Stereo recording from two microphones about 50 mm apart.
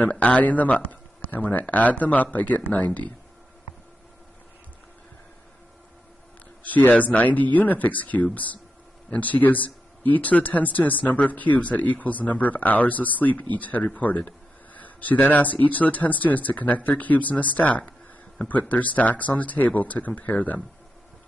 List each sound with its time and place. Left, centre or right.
0.0 s speech: left
6.6 s speech: left